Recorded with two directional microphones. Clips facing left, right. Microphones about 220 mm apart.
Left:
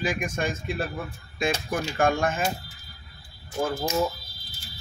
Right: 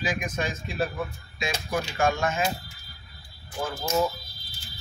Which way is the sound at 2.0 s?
50° left (ahead or behind).